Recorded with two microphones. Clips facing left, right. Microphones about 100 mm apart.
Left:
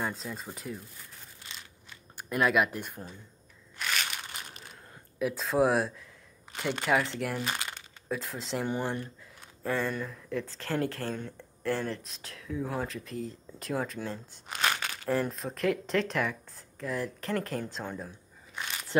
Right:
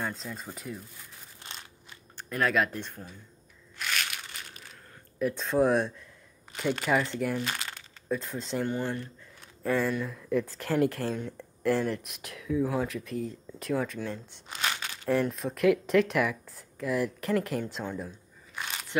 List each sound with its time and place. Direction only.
0.0 s speech: 5° left (ahead or behind)
2.1 s speech: 10° left (ahead or behind)
3.8 s crushing: centre (ahead or behind)
5.2 s speech: centre (ahead or behind)
7.4 s speech: 20° left (ahead or behind)
8.1 s speech: centre (ahead or behind)
8.6 s speech: 15° left (ahead or behind)
9.8 s speech: centre (ahead or behind)
10.3 s speech: 10° right (ahead or behind)
12.4 s speech: centre (ahead or behind)
14.5 s crumpling: 55° left (ahead or behind)
15.0 s speech: centre (ahead or behind)
18.5 s a sound: 5° right (ahead or behind)